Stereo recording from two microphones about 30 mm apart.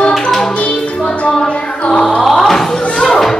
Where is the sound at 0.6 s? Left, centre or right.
Left.